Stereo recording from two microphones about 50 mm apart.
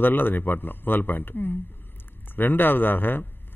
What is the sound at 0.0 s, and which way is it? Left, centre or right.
Speech, left.